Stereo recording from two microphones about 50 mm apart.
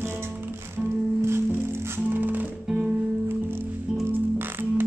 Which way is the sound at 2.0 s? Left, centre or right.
Right.